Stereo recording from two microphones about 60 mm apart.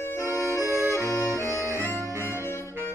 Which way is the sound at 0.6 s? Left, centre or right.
Right.